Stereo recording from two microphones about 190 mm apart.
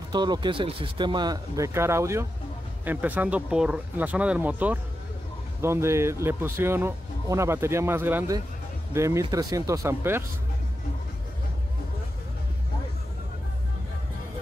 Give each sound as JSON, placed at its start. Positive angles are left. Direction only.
{"t": 0.1, "sound": "speech", "side_deg": -20}